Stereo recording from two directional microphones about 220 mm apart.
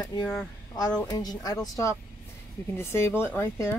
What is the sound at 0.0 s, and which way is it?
Speech, 20° left (ahead or behind).